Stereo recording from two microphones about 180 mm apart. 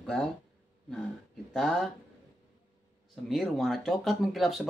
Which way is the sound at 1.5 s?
5° left (ahead or behind).